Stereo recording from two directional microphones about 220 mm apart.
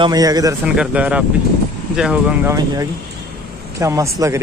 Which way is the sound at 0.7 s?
5° right (ahead or behind).